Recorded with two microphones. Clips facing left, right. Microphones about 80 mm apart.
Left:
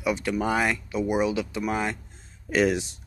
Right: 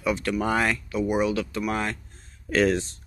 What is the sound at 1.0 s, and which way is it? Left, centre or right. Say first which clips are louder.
Speech: right 1 dB; centre.